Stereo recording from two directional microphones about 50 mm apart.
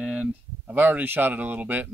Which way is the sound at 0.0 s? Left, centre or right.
Centre.